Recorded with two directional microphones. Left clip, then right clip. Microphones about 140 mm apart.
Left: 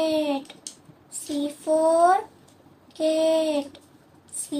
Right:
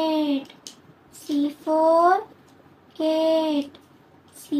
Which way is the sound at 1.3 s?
20° right (ahead or behind).